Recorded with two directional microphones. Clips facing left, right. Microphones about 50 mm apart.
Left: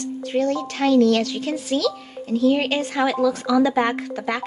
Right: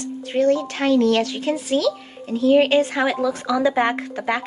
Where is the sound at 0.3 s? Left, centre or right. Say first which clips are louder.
Right 4 dB; right.